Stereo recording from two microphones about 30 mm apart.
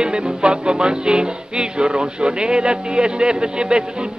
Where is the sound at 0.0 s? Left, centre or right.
Right.